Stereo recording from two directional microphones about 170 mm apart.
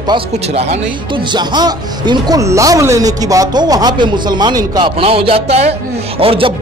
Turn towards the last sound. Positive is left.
turn(degrees=-35)  # may be behind; listen again after turning